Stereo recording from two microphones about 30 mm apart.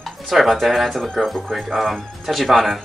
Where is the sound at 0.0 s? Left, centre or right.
Centre.